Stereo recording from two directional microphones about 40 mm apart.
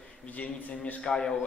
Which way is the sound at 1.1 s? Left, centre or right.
Centre.